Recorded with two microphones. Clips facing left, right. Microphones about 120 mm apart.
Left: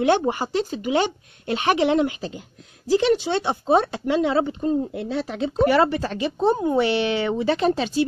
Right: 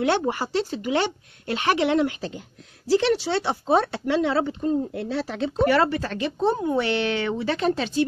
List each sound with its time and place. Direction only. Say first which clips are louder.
0.0 s speech: left 3 dB; 20° left (ahead or behind)